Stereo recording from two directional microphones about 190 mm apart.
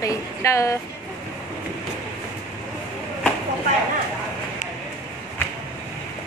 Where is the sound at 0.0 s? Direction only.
15° left (ahead or behind).